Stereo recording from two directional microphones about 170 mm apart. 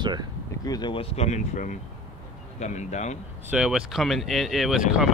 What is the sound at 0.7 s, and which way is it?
Speech, 25° left (ahead or behind).